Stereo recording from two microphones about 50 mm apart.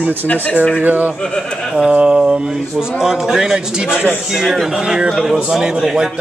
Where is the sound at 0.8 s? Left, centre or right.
Right.